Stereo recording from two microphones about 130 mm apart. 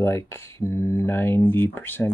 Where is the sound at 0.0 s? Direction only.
20° left (ahead or behind).